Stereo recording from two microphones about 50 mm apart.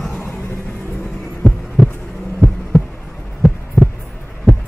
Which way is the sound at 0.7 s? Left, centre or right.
Left.